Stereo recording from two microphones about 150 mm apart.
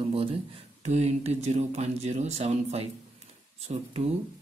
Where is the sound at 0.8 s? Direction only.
45° right (ahead or behind).